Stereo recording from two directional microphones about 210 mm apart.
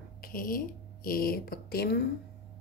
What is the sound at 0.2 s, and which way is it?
Speech, 40° left (ahead or behind).